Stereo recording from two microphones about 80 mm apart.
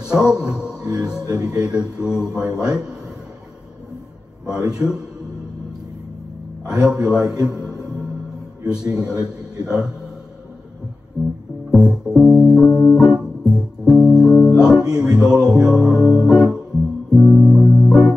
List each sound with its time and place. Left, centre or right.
0.0 s music: centre
1.3 s a man's voice: centre
4.5 s a man's voice: centre
6.6 s a man's voice: centre
11.2 s music: centre
12.6 s music: left
12.9 s music: centre
14.3 s music: left
14.6 s music: centre